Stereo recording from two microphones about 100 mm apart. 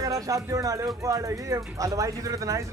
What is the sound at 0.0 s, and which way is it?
Speech, 35° right (ahead or behind).